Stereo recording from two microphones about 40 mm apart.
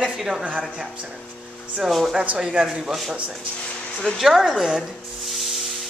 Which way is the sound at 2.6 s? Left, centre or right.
Centre.